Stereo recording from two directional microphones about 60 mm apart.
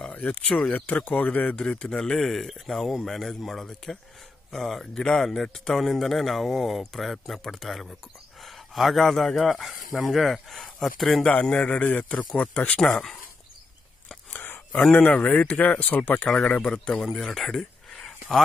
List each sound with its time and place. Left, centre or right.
0.0 s a man's voice: centre
11.2 s speech: centre
11.8 s a man's voice: left
12.4 s speech: centre
14.3 s a sound: left
15.1 s speech: left
16.3 s speech: centre